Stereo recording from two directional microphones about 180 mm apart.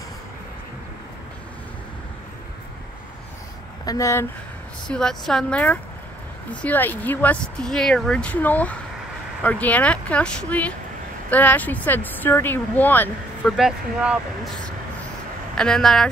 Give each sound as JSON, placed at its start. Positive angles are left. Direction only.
{"t": 3.8, "sound": "speech", "side_deg": 20}
{"t": 4.8, "sound": "a woman's voice", "side_deg": 5}
{"t": 13.6, "sound": "a woman's voice", "side_deg": 0}
{"t": 15.5, "sound": "a woman's voice", "side_deg": 5}